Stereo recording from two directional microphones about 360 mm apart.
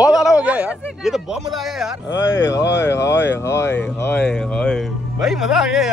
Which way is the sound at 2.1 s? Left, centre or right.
Left.